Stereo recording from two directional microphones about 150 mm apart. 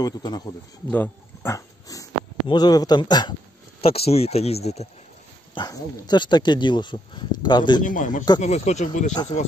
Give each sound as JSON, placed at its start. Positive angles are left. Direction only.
{"t": 0.0, "sound": "speech", "side_deg": 25}
{"t": 0.8, "sound": "speech", "side_deg": 10}
{"t": 3.8, "sound": "speech", "side_deg": 40}
{"t": 5.5, "sound": "speech", "side_deg": 30}
{"t": 7.8, "sound": "speech", "side_deg": 60}
{"t": 8.4, "sound": "speech", "side_deg": 50}